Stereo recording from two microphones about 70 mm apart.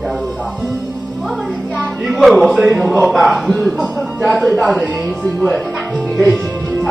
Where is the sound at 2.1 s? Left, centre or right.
Centre.